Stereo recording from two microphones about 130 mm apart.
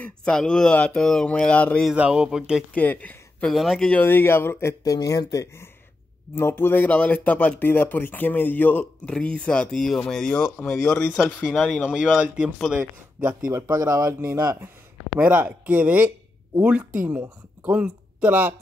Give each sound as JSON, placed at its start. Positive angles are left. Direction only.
{"t": 0.0, "sound": "speech", "side_deg": 5}
{"t": 1.9, "sound": "speech", "side_deg": -10}
{"t": 2.7, "sound": "speech", "side_deg": 10}
{"t": 3.5, "sound": "speech", "side_deg": 0}
{"t": 4.0, "sound": "speech", "side_deg": 15}
{"t": 11.9, "sound": "speech", "side_deg": -5}
{"t": 13.5, "sound": "speech", "side_deg": -25}
{"t": 15.1, "sound": "speech", "side_deg": -15}